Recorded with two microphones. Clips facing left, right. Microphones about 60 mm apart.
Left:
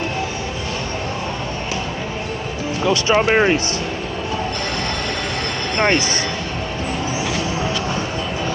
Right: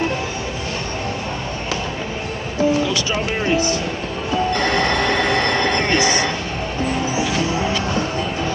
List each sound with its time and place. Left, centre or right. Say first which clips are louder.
2.9 s speech: left 6 dB; left
4.7 s train: right 6 dB; right